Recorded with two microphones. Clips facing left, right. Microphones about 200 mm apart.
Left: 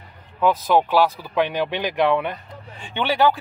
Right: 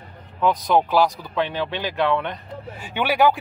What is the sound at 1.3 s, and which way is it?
Speech, 15° left (ahead or behind).